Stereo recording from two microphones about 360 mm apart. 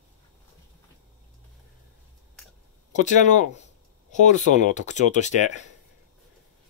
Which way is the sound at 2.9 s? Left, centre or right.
Centre.